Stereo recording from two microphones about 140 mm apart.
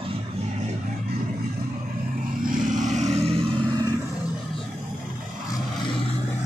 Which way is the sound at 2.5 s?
65° right (ahead or behind).